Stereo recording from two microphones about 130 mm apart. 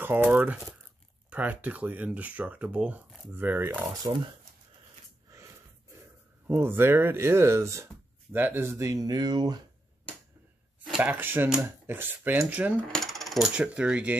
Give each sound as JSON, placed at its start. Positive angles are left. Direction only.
{"t": 0.0, "sound": "speech", "side_deg": -15}
{"t": 4.0, "sound": "speech", "side_deg": -35}
{"t": 5.3, "sound": "a sound", "side_deg": -25}
{"t": 6.4, "sound": "speech", "side_deg": -15}
{"t": 11.0, "sound": "speech", "side_deg": -15}
{"t": 12.8, "sound": "coin", "side_deg": 5}